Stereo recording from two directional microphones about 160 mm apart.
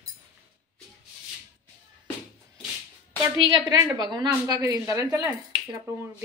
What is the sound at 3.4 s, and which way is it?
A woman's voice, 25° right (ahead or behind).